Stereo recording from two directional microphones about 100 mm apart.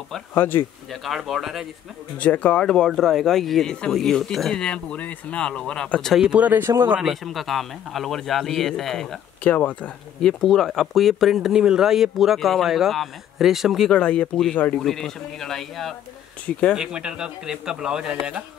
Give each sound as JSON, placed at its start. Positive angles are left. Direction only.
{"t": 0.3, "sound": "speech", "side_deg": 20}
{"t": 1.0, "sound": "speech", "side_deg": 0}
{"t": 2.1, "sound": "speech", "side_deg": 15}
{"t": 6.2, "sound": "speech", "side_deg": -15}
{"t": 7.0, "sound": "speech", "side_deg": 0}
{"t": 9.4, "sound": "speech", "side_deg": 15}
{"t": 13.8, "sound": "speech", "side_deg": 10}
{"t": 16.7, "sound": "speech", "side_deg": -5}